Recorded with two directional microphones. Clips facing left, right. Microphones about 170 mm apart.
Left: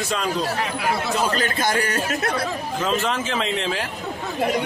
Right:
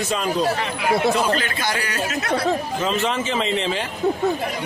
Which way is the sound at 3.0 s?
Centre (ahead or behind).